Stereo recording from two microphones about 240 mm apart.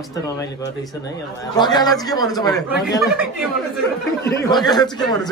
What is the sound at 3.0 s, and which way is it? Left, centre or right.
Speech, centre.